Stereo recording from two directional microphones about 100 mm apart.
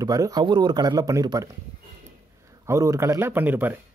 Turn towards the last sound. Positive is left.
turn(degrees=-20)  # may be behind; listen again after turning